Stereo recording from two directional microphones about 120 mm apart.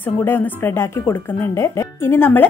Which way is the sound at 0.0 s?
15° left (ahead or behind).